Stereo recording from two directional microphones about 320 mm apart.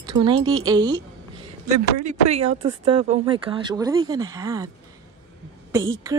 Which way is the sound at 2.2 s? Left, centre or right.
Centre.